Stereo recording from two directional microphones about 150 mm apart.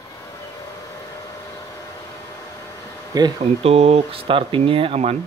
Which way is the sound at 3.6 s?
45° right (ahead or behind).